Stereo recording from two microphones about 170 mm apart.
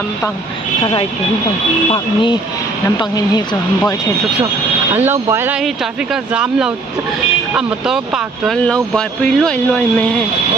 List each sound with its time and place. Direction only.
3.0 s speech: 25° left (ahead or behind)
4.9 s speech: 15° right (ahead or behind); by 10.2 s 10° left (ahead or behind)